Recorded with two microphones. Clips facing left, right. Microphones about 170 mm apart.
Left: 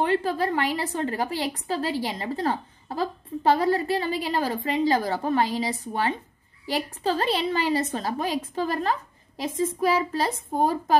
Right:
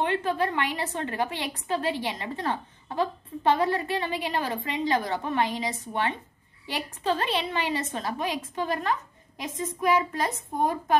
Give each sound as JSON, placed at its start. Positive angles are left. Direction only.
{"t": 0.0, "sound": "a woman's voice", "side_deg": 35}